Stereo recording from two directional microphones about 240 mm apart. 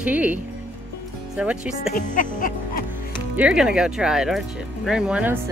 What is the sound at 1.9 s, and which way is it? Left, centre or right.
Speech, left.